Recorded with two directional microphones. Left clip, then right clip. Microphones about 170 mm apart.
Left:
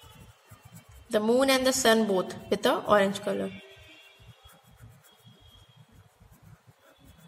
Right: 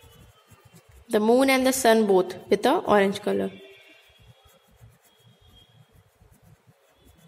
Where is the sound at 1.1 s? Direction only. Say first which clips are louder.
Right 4 dB; 35° right (ahead or behind).